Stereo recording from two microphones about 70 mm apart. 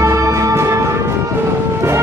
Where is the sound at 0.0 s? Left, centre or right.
Right.